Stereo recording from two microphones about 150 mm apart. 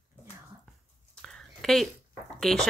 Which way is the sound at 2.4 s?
Centre (ahead or behind).